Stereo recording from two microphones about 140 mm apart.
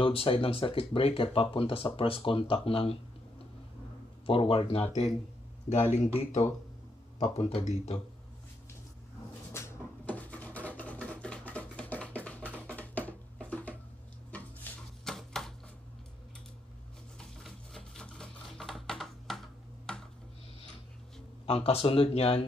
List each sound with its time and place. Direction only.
0.0 s speech: 40° left (ahead or behind)
4.3 s speech: 40° left (ahead or behind)
5.9 s speech: 50° left (ahead or behind)
9.5 s a sound: 15° left (ahead or behind)
17.2 s typewriter: centre (ahead or behind)
19.9 s a sound: 5° left (ahead or behind)
21.5 s speech: 45° left (ahead or behind)